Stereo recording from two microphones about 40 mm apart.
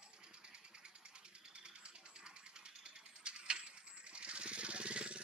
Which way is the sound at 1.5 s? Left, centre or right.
Right.